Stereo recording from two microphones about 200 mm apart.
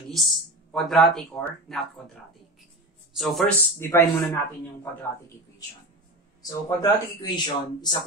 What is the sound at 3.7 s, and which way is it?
Speech, 15° left (ahead or behind).